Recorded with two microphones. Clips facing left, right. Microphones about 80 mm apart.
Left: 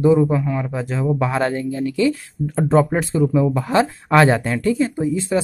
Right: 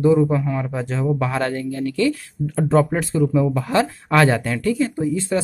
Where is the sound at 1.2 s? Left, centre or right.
Centre.